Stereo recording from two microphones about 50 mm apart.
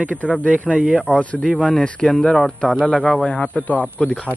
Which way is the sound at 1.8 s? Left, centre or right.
Left.